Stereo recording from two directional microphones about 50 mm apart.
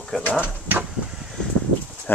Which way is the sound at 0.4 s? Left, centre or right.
Right.